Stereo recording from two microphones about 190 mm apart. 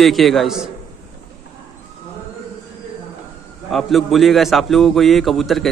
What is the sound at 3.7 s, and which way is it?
A man's voice, centre (ahead or behind).